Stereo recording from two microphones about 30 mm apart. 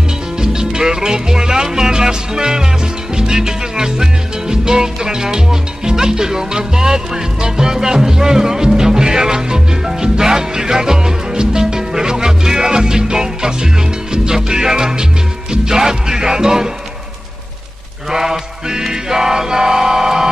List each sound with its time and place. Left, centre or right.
0.4 s music: right
18.1 s music: centre